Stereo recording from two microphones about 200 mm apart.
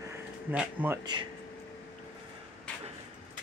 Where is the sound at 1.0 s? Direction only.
20° right (ahead or behind).